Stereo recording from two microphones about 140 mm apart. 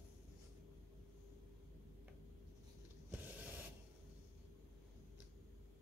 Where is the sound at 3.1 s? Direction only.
15° right (ahead or behind).